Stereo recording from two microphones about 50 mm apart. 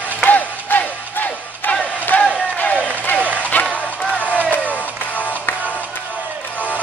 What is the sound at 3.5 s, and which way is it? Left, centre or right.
Music, left.